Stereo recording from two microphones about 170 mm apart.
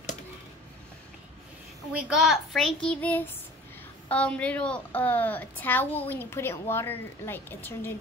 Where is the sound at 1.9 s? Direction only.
5° right (ahead or behind).